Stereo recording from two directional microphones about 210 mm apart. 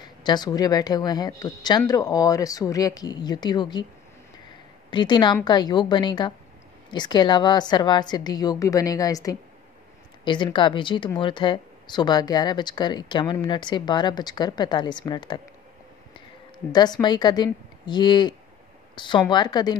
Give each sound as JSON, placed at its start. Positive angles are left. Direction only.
{"t": 0.2, "sound": "speech", "side_deg": 20}
{"t": 4.9, "sound": "speech", "side_deg": 20}